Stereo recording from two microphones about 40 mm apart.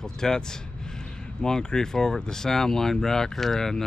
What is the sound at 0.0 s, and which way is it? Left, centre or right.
Speech, centre.